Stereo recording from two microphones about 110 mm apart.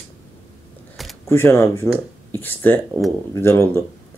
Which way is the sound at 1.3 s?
25° left (ahead or behind).